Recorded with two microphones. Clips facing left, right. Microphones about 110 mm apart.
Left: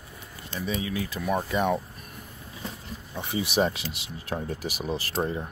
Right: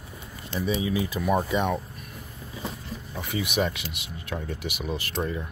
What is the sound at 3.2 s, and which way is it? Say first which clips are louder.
Speech: left 2 dB; 30° left (ahead or behind).